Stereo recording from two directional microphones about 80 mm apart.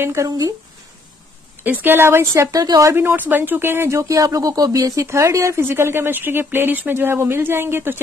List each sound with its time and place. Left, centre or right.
0.0 s speech: right
1.6 s speech: right